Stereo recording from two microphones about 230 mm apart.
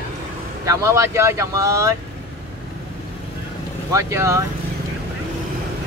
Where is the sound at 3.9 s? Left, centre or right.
Centre.